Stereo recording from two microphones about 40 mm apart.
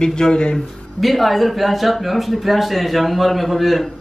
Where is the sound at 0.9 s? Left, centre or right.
Centre.